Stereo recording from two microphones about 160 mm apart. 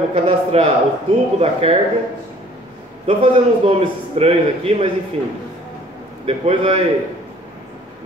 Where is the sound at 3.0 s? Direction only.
35° right (ahead or behind).